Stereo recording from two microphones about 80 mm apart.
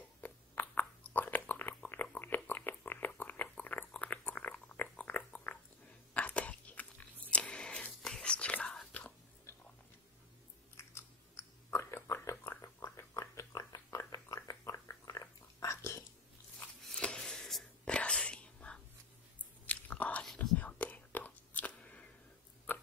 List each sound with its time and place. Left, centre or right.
0.2 s chewing: left
1.9 s a sound: left
6.1 s biting: centre
10.8 s chewing: left
13.8 s dog: left
17.0 s a sound: centre
17.9 s whispering: centre
19.6 s chewing: centre
20.3 s whispering: centre
22.7 s a sound: left